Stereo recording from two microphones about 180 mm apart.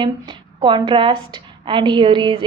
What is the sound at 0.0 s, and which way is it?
A woman's voice, 25° right (ahead or behind).